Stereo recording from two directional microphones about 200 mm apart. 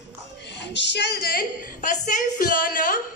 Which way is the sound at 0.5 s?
60° left (ahead or behind).